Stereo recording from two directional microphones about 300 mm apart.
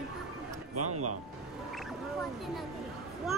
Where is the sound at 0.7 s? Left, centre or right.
Right.